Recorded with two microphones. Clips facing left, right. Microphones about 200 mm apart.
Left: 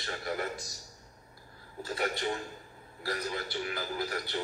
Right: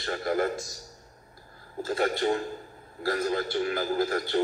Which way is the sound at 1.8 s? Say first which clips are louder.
Right 7 dB; 50° right (ahead or behind).